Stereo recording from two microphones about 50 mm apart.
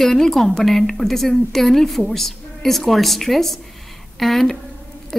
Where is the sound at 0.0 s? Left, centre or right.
Centre.